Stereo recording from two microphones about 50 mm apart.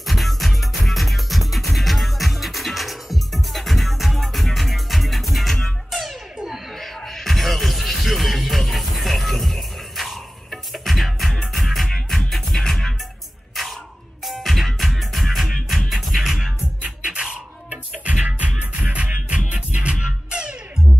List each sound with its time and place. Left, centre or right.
0.0 s music: centre
13.5 s a sound: centre
14.2 s music: centre
17.6 s music: right